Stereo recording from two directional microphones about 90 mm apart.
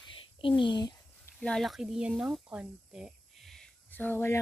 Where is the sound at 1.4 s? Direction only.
Centre (ahead or behind).